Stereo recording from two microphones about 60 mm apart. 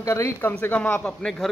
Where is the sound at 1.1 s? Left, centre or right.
Centre.